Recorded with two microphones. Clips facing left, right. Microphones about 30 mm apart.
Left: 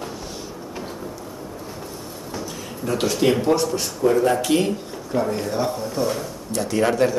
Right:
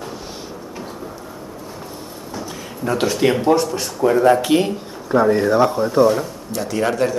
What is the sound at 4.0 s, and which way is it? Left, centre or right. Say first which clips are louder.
Speech: right 5 dB; right.